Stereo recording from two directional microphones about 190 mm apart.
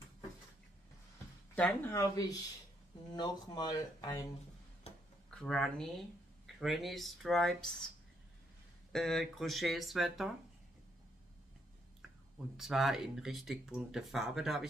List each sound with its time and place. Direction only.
1.5 s speech: 10° left (ahead or behind)
5.3 s speech: 5° left (ahead or behind)
8.9 s speech: centre (ahead or behind)
12.5 s speech: centre (ahead or behind)